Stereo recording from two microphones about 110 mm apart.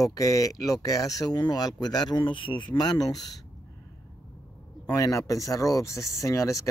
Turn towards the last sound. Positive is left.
turn(degrees=30)  # may be behind; listen again after turning